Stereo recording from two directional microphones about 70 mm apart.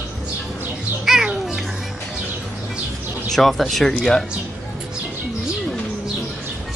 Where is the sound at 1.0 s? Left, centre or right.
Centre.